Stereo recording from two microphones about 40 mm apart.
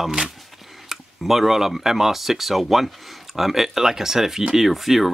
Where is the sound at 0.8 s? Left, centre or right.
Centre.